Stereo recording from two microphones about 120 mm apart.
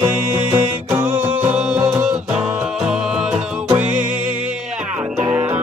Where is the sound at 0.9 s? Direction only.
15° right (ahead or behind).